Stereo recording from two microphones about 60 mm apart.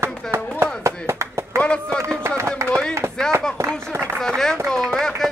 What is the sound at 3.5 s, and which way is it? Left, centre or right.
Speech, right.